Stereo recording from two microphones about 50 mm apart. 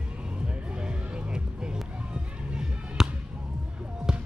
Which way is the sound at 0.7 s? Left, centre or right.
Centre.